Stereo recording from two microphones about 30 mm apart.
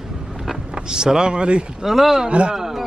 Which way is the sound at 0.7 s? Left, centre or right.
Right.